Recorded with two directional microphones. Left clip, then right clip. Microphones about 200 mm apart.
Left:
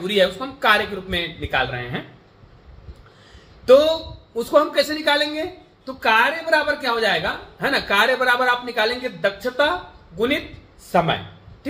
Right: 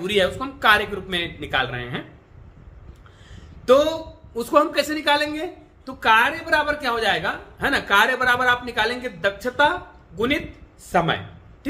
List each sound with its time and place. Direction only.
0.0 s a woman's voice: 15° right (ahead or behind)
3.6 s a woman's voice: 10° right (ahead or behind)